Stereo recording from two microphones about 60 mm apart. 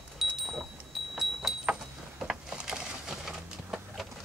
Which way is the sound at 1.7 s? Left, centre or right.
Centre.